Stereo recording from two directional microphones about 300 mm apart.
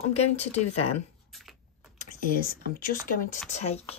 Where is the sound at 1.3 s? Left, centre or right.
Centre.